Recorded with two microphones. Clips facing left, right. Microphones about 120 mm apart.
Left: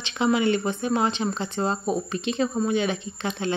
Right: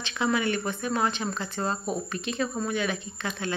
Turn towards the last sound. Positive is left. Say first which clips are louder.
# left 4 dB
turn(degrees=25)  # may be behind; listen again after turning